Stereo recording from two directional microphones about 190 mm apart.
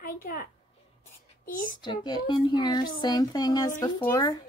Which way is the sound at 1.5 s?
45° left (ahead or behind).